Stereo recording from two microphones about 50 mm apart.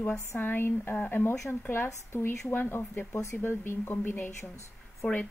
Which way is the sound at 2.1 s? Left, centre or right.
Left.